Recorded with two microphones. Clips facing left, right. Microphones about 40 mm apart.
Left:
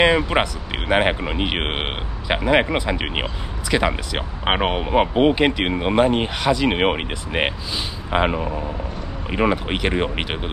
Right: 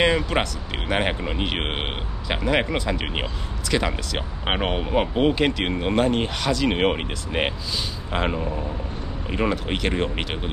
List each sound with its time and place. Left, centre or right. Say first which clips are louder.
0.0 s speech: left 4 dB; centre